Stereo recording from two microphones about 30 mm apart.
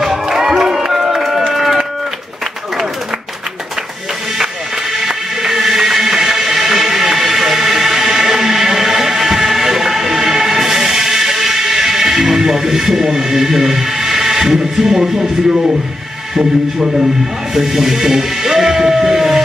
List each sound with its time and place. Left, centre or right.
0.0 s crowd: centre
5.0 s music: centre
16.3 s speech: right
17.6 s music: centre